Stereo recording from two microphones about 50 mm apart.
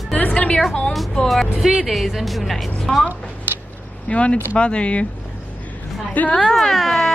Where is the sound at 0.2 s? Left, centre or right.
Left.